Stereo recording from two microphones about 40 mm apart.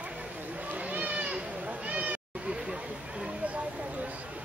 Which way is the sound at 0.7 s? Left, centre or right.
Right.